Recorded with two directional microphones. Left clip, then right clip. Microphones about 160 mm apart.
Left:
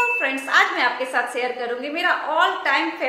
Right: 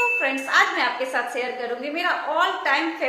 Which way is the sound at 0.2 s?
5° left (ahead or behind).